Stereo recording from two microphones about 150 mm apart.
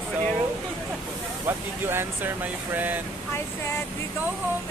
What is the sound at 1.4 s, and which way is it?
Speech, 15° right (ahead or behind).